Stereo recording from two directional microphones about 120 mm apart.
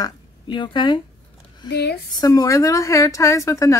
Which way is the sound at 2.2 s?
30° left (ahead or behind).